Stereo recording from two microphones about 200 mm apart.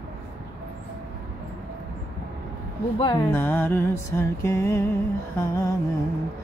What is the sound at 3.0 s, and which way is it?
Speech, 25° left (ahead or behind).